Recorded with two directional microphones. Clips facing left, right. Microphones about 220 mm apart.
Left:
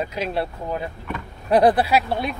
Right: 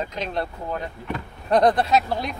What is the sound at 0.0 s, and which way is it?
Speech, 5° left (ahead or behind).